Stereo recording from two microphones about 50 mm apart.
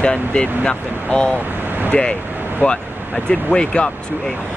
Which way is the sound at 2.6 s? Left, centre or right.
Left.